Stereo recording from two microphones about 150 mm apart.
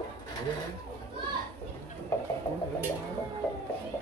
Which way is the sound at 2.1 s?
15° left (ahead or behind).